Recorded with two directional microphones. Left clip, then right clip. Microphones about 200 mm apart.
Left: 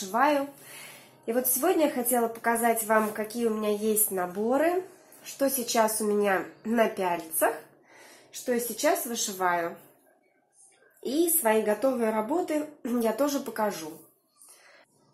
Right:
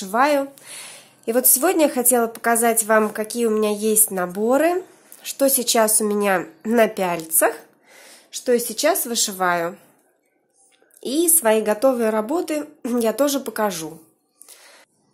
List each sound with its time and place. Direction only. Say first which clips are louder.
0.1 s a woman's voice: right 6 dB; 50° right (ahead or behind)
11.0 s a woman's voice: right 6 dB; 45° right (ahead or behind)